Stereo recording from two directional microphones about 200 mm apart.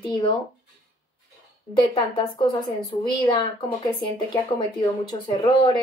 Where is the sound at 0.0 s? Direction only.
25° left (ahead or behind).